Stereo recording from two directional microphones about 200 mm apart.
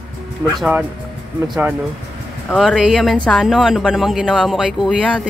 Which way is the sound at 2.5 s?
Centre (ahead or behind).